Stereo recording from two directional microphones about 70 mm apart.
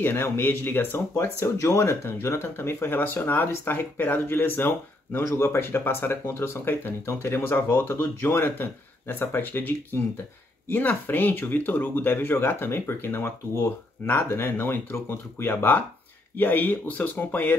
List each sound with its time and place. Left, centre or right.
0.0 s speech: left